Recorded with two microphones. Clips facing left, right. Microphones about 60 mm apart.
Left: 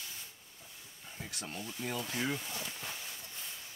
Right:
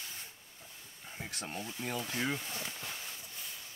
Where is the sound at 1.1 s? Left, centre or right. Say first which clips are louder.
Right 2 dB; right.